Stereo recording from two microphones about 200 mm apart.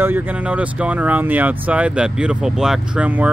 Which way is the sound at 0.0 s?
10° right (ahead or behind).